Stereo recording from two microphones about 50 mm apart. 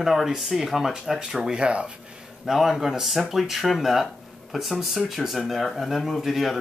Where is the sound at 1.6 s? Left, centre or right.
Right.